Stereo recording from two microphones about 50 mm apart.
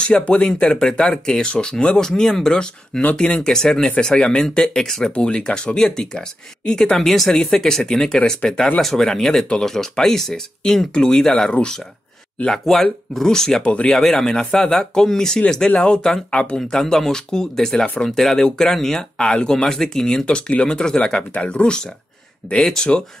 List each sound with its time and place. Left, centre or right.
0.0 s speech: centre
13.9 s speech: centre
16.5 s speech: centre
20.2 s speech: left